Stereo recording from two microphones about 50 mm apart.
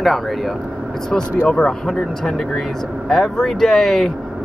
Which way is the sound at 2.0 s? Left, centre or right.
Centre.